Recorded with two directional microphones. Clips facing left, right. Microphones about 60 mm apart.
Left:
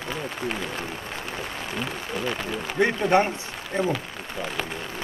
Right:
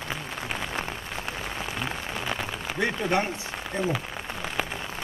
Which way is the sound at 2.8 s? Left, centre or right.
Left.